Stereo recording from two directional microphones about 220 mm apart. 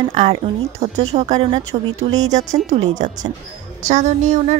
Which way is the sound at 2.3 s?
35° right (ahead or behind).